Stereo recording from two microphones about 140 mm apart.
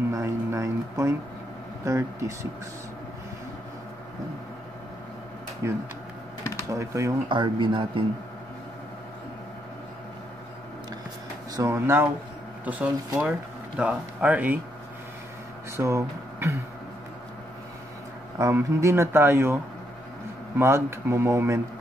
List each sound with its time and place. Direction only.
0.1 s a sound: 20° right (ahead or behind)
1.9 s speech: 20° right (ahead or behind)
5.6 s speech: 20° right (ahead or behind)
7.2 s speech: 35° right (ahead or behind)
11.5 s speech: 20° right (ahead or behind)
15.7 s speech: 20° right (ahead or behind)
18.4 s speech: 20° right (ahead or behind)